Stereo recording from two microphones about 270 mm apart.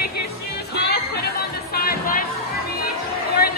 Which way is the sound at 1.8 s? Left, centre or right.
Left.